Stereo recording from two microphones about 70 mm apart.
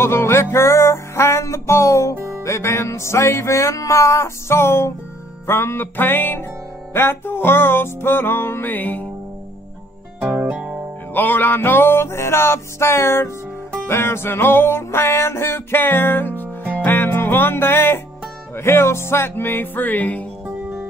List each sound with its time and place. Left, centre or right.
0.0 s music: left
10.2 s music: right
10.5 s music: centre
11.1 s music: left